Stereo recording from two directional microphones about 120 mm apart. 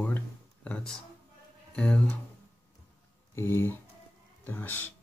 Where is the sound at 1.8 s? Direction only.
10° left (ahead or behind).